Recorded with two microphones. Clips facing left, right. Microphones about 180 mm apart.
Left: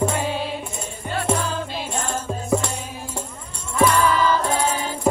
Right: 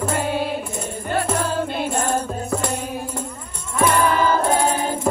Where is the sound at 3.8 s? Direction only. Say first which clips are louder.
Right 2 dB; 55° right (ahead or behind).